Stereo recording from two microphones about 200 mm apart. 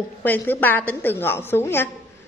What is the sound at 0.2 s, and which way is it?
A woman's voice, 10° left (ahead or behind).